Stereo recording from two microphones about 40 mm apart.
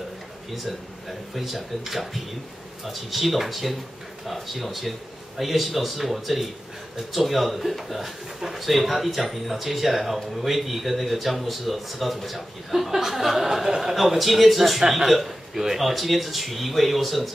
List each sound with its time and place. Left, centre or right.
1.3 s speech: centre
13.9 s speech: centre